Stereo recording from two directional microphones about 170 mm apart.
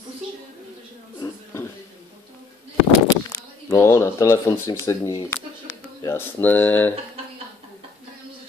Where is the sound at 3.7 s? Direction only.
15° left (ahead or behind).